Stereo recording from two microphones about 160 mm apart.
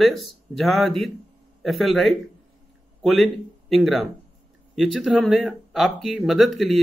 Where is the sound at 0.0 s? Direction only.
Centre (ahead or behind).